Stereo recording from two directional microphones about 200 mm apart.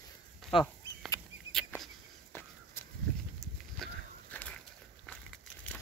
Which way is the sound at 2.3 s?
10° left (ahead or behind).